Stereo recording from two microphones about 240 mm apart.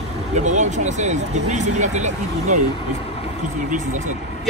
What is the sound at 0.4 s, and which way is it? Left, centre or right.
Speech, right.